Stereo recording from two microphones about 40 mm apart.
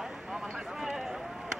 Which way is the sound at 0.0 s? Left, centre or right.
Centre.